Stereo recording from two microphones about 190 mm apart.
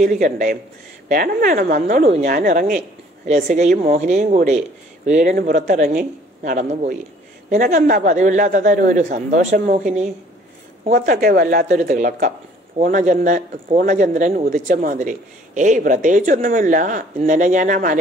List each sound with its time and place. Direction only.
0.0 s a woman's voice: 40° right (ahead or behind)
10.9 s a woman's voice: 50° right (ahead or behind)